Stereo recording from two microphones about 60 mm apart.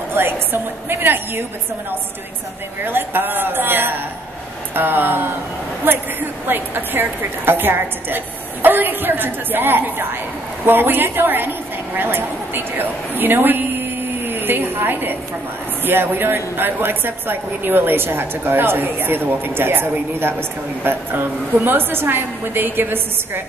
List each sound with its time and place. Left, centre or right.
0.1 s a woman's voice: right
2.8 s a woman's voice: right
13.2 s a sound: right
15.8 s a woman's voice: right